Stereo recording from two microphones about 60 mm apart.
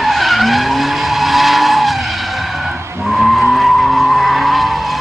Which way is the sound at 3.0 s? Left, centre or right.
Centre.